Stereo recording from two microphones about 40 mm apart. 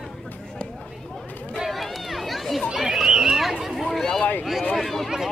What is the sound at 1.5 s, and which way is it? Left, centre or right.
Run, centre.